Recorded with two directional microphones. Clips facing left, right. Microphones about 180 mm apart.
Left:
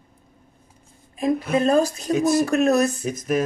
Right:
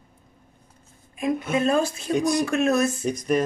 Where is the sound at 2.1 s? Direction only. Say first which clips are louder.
Left 3 dB; 5° left (ahead or behind).